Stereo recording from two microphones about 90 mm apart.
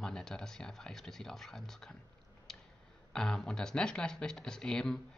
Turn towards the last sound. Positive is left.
turn(degrees=5)  # may be behind; listen again after turning